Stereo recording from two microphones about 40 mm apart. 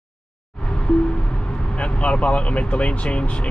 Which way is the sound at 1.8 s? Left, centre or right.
Left.